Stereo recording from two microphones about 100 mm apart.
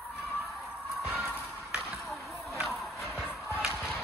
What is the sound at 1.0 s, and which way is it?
Music, 15° right (ahead or behind).